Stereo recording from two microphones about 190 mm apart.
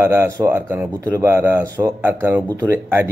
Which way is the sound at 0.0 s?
15° right (ahead or behind).